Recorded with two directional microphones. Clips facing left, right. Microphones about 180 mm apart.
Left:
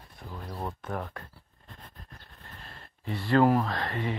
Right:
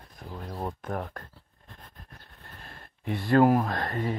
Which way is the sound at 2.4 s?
55° right (ahead or behind).